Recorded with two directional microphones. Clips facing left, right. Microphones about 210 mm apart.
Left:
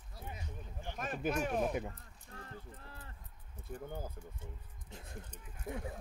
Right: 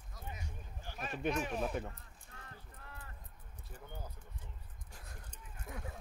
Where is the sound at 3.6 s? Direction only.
50° left (ahead or behind).